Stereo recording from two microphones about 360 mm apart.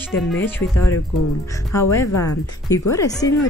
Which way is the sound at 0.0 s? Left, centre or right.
Centre.